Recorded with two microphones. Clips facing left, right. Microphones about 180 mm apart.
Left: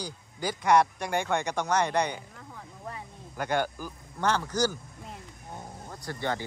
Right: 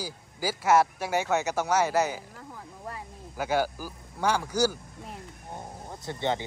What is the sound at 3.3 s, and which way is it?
Speech, 5° right (ahead or behind).